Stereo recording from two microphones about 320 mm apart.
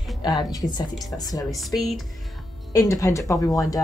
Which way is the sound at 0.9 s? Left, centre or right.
Centre.